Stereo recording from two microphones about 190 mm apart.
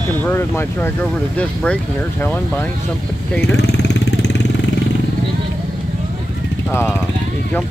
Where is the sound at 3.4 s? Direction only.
60° left (ahead or behind).